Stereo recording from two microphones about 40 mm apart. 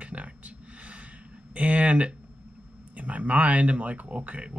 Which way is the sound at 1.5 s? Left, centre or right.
Right.